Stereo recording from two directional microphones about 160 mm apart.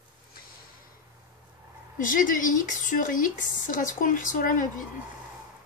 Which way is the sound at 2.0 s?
55° left (ahead or behind).